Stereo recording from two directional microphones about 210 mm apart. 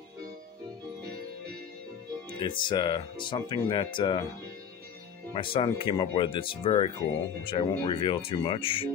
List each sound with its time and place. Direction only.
2.4 s speech: 20° left (ahead or behind)
5.3 s speech: 25° left (ahead or behind)